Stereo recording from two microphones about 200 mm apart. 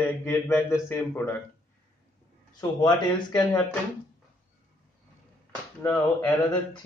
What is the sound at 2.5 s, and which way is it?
Speech, 20° left (ahead or behind).